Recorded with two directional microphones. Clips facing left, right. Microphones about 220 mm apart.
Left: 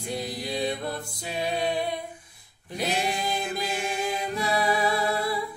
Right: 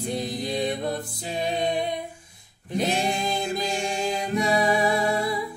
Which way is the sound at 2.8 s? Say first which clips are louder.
Right 3 dB; 20° right (ahead or behind).